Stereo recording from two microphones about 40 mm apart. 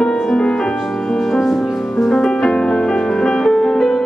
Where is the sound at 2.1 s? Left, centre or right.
Centre.